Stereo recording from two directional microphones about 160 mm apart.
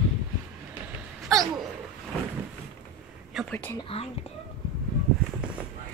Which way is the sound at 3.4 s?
Centre (ahead or behind).